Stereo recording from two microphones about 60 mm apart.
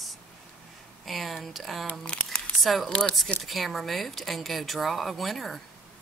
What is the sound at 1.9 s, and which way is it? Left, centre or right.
Speech, centre.